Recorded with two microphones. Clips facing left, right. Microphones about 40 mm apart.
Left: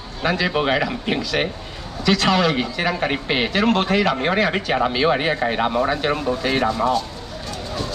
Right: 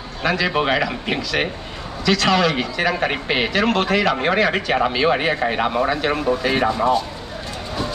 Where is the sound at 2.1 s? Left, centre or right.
Centre.